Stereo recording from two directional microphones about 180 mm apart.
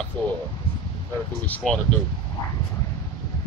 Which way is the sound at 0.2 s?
5° left (ahead or behind).